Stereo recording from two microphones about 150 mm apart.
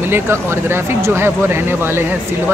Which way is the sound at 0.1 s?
15° right (ahead or behind).